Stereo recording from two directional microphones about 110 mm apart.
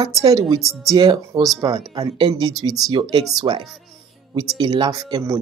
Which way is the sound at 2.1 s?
50° right (ahead or behind).